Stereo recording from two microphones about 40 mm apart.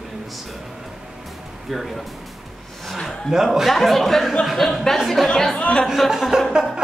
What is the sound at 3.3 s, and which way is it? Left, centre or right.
Speech, centre.